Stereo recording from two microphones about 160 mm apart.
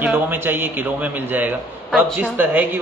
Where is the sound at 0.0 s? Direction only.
10° right (ahead or behind).